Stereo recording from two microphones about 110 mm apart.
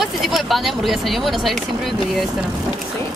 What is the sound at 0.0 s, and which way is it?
Speech, centre (ahead or behind).